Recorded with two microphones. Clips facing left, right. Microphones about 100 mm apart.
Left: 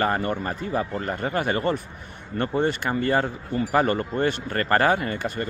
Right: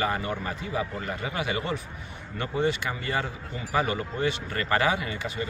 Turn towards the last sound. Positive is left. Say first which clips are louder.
# left 4 dB
turn(degrees=55)  # may be behind; listen again after turning